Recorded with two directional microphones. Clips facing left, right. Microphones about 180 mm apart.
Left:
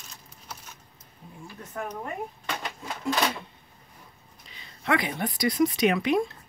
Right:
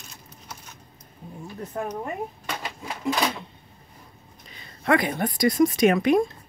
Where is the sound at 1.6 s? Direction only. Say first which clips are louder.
Right 5 dB; 35° right (ahead or behind).